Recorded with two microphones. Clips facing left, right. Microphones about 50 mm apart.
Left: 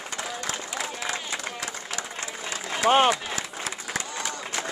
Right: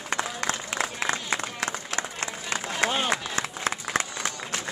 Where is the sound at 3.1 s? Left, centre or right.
Right.